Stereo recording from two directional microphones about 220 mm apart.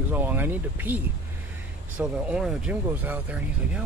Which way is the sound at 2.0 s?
5° right (ahead or behind).